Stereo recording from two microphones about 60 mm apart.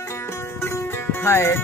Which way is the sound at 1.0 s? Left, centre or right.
Left.